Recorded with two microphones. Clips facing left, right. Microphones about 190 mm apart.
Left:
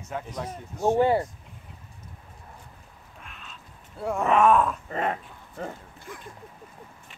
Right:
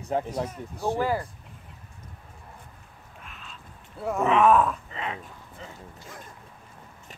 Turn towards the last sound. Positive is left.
turn(degrees=55)  # may be behind; listen again after turning